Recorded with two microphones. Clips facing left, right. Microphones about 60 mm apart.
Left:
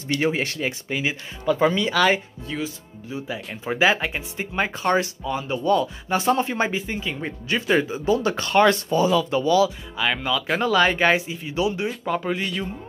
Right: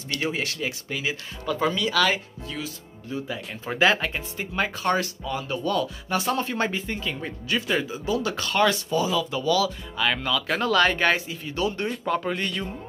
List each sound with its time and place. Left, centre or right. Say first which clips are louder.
0.1 s speech: left 5 dB; centre
9.3 s speech: left 7 dB; left
9.9 s speech: left 1 dB; centre